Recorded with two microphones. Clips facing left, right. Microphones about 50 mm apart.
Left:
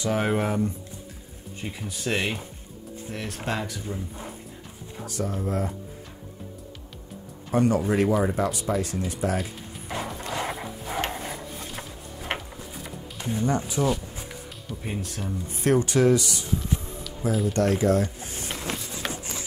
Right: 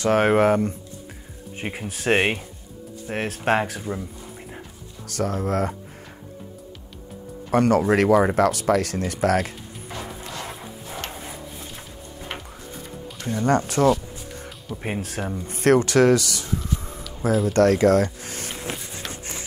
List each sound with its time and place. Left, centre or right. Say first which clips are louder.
0.0 s speech: right 7 dB; right
5.0 s speech: right 4 dB; right
7.5 s speech: right 4 dB; right
10.0 s music: left 2 dB; centre
10.8 s dog: left 5 dB; centre
13.3 s speech: right 5 dB; right
14.9 s speech: right 4 dB; right
15.1 s speech: right 4 dB; right
17.5 s speech: right 6 dB; right
18.6 s a sound: even; centre